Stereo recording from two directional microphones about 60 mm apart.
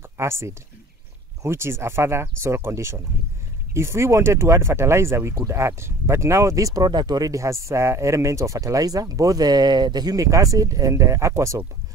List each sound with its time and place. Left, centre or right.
0.2 s speech: right